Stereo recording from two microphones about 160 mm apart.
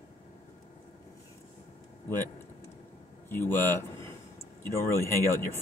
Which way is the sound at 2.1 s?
15° left (ahead or behind).